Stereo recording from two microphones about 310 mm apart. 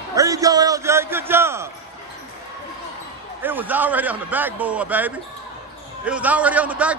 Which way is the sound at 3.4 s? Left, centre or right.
Centre.